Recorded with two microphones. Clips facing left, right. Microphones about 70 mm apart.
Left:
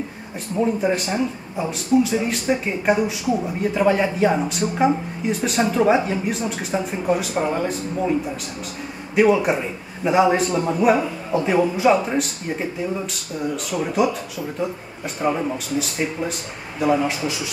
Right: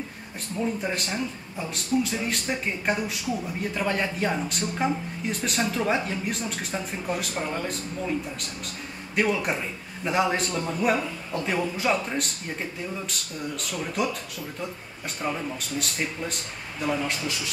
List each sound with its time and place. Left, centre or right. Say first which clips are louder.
0.7 s a man's voice: left 7 dB; centre
9.1 s a man's voice: left 9 dB; centre
15.2 s speech: left 8 dB; centre
15.8 s a man's voice: left 6 dB; centre